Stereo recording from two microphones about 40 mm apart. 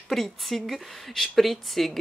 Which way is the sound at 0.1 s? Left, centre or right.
Centre.